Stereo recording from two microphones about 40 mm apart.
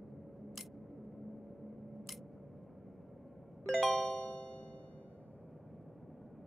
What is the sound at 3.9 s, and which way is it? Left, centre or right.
Music, left.